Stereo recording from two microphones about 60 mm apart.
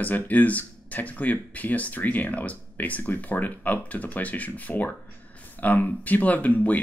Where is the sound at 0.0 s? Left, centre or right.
Left.